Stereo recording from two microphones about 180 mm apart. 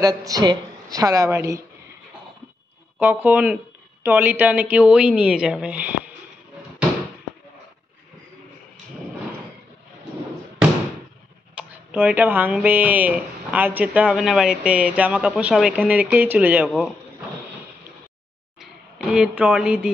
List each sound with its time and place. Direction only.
0.0 s a woman's voice: 20° right (ahead or behind)
3.0 s speech: 10° right (ahead or behind)
11.5 s speech: 5° right (ahead or behind)
18.6 s speech: centre (ahead or behind)